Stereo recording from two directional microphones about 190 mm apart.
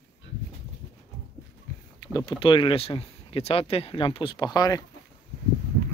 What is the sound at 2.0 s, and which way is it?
Speech, 20° left (ahead or behind).